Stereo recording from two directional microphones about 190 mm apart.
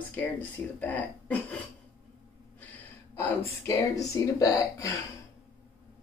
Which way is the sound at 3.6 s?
15° left (ahead or behind).